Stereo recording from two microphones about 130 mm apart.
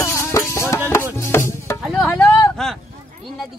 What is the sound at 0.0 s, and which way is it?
Music, 20° left (ahead or behind).